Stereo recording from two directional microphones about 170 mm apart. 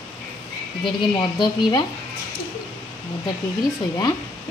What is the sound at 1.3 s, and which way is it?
Speech, 25° left (ahead or behind).